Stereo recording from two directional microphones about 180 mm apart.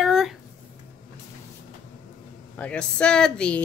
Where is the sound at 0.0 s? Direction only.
Centre (ahead or behind).